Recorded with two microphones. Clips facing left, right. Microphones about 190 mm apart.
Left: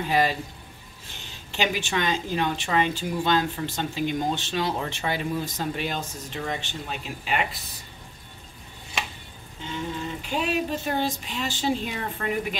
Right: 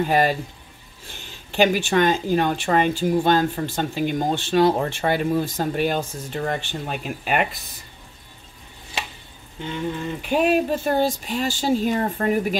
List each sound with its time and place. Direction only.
0.0 s speech: 50° right (ahead or behind)
1.5 s speech: 50° right (ahead or behind)
10.3 s speech: 55° right (ahead or behind)